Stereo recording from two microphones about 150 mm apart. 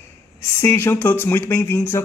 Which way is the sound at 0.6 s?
15° left (ahead or behind).